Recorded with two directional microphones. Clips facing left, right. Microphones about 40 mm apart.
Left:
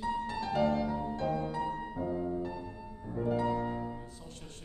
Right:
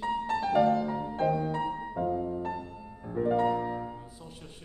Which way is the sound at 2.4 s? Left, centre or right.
Right.